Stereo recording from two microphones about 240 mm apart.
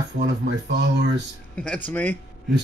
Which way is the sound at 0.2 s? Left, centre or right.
Right.